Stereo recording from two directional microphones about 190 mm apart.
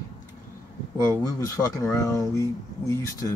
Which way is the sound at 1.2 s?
15° left (ahead or behind).